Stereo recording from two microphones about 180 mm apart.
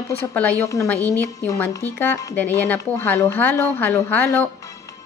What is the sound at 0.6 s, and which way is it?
Speech, 20° left (ahead or behind).